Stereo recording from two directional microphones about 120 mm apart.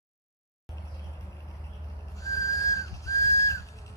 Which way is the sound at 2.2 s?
30° left (ahead or behind).